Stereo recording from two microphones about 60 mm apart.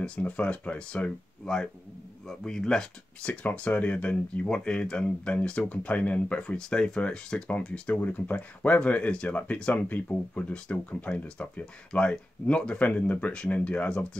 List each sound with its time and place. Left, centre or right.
0.0 s speech: left